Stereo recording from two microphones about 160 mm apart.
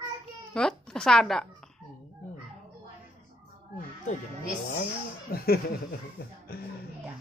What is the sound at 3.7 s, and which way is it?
Speech, 50° left (ahead or behind).